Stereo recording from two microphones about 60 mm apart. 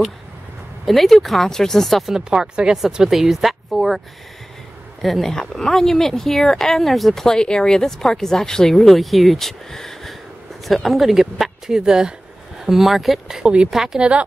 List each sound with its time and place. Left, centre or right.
0.8 s speech: centre
5.0 s speech: centre
13.4 s speech: centre
13.7 s a woman's voice: centre